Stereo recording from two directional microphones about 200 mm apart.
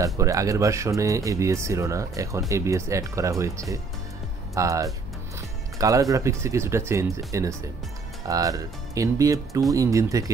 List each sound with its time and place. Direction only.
0.0 s speech: 15° right (ahead or behind)